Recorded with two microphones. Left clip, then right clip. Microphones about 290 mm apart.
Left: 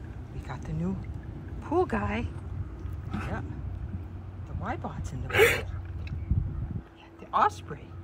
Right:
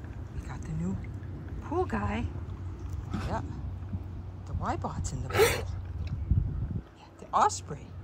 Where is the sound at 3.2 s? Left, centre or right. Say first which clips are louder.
Right 2 dB; centre.